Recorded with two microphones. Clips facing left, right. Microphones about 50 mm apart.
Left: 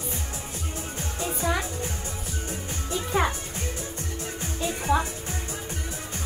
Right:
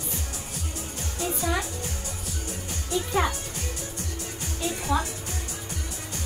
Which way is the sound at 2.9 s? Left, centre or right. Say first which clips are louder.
Right 2 dB; left.